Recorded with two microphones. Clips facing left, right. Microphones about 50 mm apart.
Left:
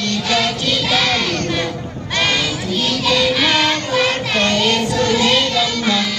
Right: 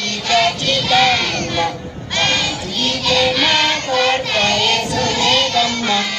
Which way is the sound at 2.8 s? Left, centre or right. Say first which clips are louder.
Right 1 dB; centre.